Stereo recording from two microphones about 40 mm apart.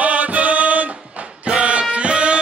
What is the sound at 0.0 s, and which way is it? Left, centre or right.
Music, right.